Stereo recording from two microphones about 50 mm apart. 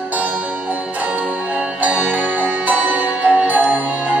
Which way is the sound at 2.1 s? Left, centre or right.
Right.